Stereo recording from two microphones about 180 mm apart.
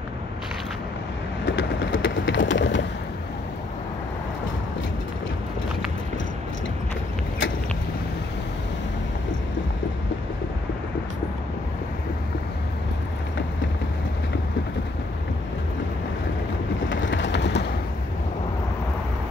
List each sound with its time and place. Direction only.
1.4 s vehicle: 85° left
16.9 s vehicle: 90° left; by 17.6 s 75° left (ahead or behind)